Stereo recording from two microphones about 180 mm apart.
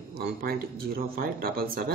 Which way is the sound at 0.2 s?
55° right (ahead or behind).